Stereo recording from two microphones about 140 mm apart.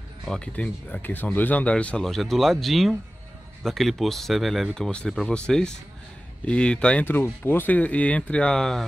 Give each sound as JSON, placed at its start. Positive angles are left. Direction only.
{"t": 0.2, "sound": "speech", "side_deg": 5}